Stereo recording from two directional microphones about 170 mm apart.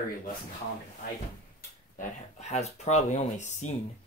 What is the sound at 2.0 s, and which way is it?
Speech, 40° left (ahead or behind).